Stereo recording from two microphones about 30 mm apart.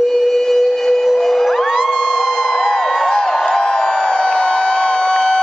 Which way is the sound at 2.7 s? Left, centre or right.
Centre.